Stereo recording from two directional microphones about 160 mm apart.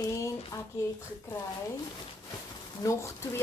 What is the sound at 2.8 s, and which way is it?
Speech, 20° left (ahead or behind).